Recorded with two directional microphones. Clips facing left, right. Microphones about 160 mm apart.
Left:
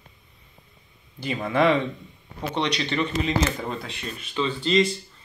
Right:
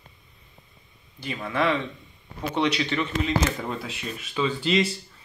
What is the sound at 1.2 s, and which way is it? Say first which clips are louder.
Speech: left 4 dB; 20° left (ahead or behind).